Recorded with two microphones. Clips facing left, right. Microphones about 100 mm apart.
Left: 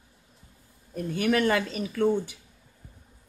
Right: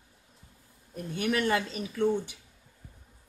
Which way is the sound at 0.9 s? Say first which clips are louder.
Left 5 dB; 80° left.